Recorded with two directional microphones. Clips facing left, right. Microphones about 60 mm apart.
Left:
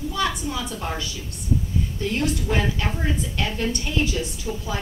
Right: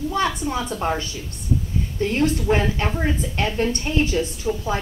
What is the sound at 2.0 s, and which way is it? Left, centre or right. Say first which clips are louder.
A woman's voice: right 5 dB; right.